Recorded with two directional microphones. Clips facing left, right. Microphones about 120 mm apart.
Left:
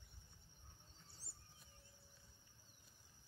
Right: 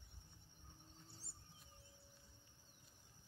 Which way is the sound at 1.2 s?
60° right (ahead or behind).